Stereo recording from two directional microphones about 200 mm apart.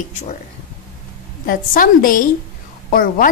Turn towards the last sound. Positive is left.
turn(degrees=45)  # may be behind; listen again after turning